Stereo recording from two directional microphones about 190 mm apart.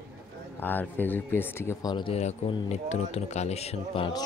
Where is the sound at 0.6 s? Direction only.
10° left (ahead or behind).